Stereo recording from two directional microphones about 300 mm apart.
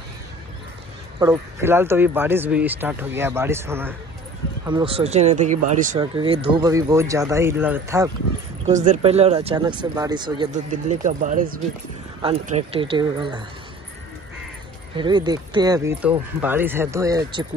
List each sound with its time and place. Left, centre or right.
1.2 s speech: centre
8.6 s speech: right
15.0 s speech: centre